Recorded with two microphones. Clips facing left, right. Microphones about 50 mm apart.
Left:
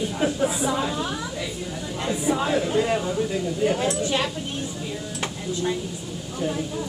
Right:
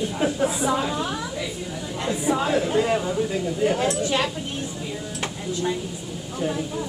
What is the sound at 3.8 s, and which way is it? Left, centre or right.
Speech, right.